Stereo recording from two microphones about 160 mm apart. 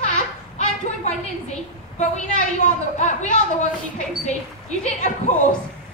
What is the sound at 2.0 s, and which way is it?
A woman's voice, 50° left (ahead or behind).